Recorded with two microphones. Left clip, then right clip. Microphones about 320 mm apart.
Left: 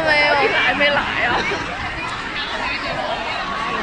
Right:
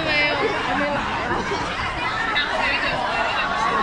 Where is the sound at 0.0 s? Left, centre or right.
Left.